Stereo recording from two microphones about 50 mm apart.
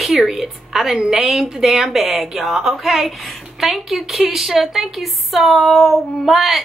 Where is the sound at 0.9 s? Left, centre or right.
Centre.